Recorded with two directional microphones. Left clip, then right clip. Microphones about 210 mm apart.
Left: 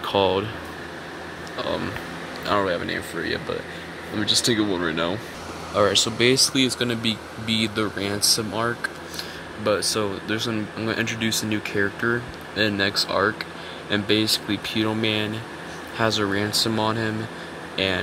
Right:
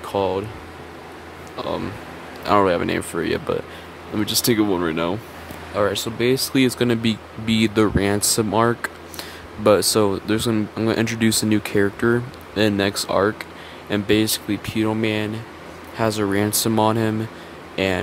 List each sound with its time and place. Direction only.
0.0 s speech: 5° right (ahead or behind)
1.6 s speech: 10° right (ahead or behind)
2.4 s speech: 20° right (ahead or behind)
6.5 s speech: 25° right (ahead or behind)